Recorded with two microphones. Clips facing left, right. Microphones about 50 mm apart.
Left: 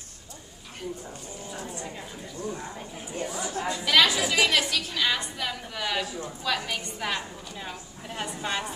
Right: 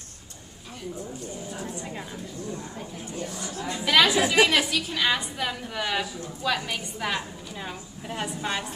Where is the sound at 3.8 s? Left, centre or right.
Centre.